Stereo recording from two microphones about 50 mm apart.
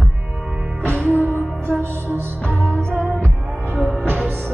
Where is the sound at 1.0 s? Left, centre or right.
Right.